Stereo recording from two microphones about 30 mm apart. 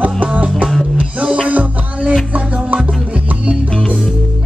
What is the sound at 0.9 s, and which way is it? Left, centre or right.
Music, right.